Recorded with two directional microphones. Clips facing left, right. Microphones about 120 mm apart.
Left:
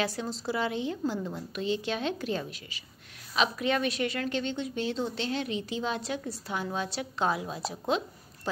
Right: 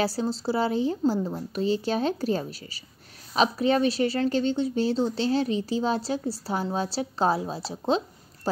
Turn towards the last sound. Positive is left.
turn(degrees=-30)  # may be behind; listen again after turning